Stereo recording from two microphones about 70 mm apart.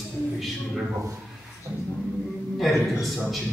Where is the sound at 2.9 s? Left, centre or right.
Centre.